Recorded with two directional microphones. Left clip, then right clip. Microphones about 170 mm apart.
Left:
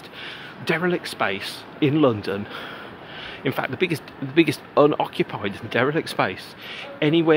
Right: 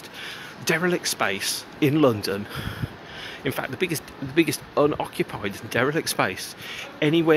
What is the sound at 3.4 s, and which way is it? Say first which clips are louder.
Speech: left 3 dB; 10° left (ahead or behind).